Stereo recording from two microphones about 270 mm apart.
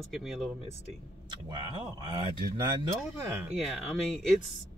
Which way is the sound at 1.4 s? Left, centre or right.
Centre.